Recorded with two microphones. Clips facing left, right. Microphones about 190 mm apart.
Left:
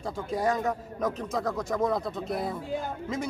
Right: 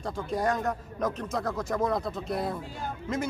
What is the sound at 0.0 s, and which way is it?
Speech, centre (ahead or behind).